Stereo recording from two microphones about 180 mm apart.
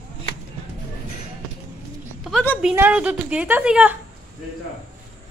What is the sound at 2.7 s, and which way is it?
A woman's voice, 10° right (ahead or behind).